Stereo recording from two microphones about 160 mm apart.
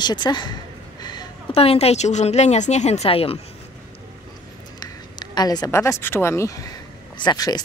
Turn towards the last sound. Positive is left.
turn(degrees=25)  # may be behind; listen again after turning